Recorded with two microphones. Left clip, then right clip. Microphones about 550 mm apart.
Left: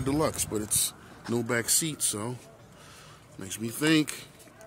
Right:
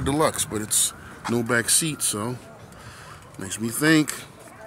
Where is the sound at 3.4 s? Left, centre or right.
Left.